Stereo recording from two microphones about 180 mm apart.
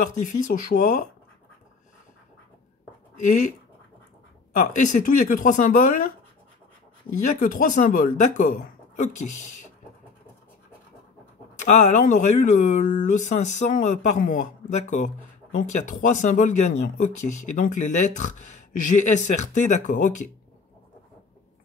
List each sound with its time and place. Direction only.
0.0 s speech: 45° left (ahead or behind)
4.6 s speech: 45° left (ahead or behind)
7.3 s speech: 50° left (ahead or behind)
11.6 s speech: 45° left (ahead or behind)